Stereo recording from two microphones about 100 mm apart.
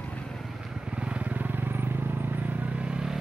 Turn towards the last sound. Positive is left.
turn(degrees=-5)  # may be behind; listen again after turning